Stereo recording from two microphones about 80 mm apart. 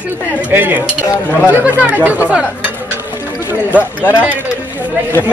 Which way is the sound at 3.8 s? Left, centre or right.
Left.